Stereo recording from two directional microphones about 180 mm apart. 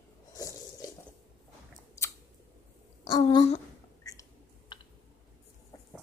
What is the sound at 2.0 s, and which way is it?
Scissors, 15° left (ahead or behind).